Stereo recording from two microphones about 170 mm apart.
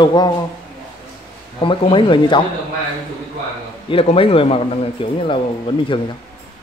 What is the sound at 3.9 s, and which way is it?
A man's voice, 35° left (ahead or behind).